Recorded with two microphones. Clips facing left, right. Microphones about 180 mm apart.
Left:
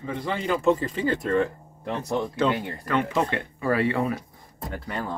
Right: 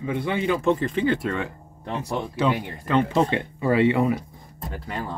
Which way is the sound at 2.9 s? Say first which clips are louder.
Right 4 dB; 25° right (ahead or behind).